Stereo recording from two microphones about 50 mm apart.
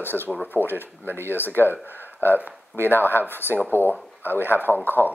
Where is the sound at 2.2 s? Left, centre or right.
Right.